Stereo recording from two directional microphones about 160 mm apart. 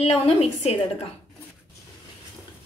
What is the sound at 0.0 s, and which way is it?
Speech, 40° left (ahead or behind).